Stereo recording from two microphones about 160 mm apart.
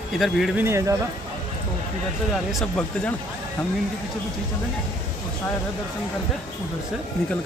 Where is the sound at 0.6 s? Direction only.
15° right (ahead or behind).